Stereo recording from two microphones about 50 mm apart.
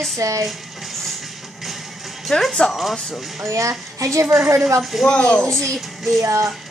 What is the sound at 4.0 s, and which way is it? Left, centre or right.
Speech, right.